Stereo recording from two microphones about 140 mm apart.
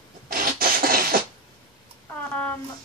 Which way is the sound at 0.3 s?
90° right.